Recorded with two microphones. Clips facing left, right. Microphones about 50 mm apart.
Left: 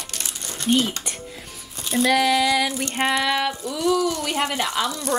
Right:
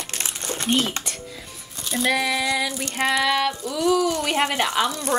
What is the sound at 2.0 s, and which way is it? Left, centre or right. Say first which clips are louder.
Female singing: left 3 dB; left.